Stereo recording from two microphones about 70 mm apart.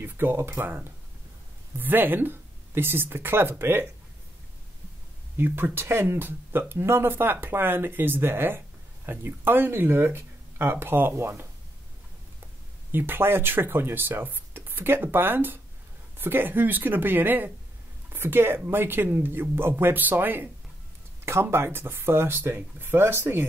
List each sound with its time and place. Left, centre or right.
0.0 s speech: right
5.4 s speech: right
12.9 s speech: right